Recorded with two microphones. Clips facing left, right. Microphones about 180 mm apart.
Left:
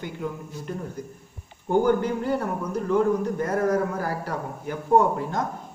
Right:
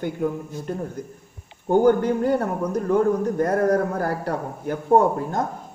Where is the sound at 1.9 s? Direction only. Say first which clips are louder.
Right 4 dB; 55° right (ahead or behind).